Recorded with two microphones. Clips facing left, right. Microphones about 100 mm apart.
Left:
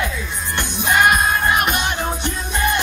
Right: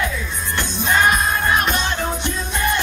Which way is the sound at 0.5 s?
15° left (ahead or behind).